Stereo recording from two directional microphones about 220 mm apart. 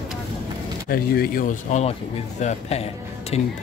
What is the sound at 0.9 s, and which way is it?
Speech, 40° left (ahead or behind).